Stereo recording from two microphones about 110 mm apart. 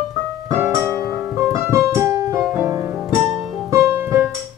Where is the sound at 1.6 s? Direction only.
20° right (ahead or behind).